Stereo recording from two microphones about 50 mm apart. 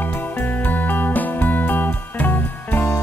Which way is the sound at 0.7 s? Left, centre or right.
Left.